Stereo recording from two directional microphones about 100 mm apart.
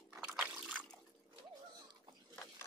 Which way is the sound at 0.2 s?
10° right (ahead or behind).